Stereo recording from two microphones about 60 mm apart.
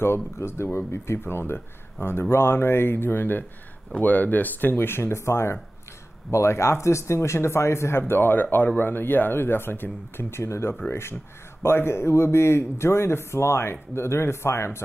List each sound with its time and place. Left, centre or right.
0.0 s speech: left
8.1 s speech: left
10.1 s speech: left